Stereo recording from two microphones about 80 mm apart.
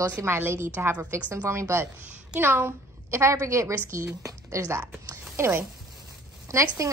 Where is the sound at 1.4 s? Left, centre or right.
Right.